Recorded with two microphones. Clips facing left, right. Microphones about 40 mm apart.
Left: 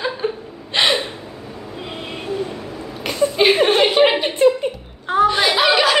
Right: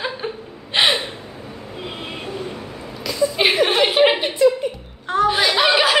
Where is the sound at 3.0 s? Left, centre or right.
Left.